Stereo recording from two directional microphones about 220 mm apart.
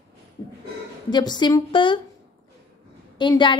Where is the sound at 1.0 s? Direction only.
20° left (ahead or behind).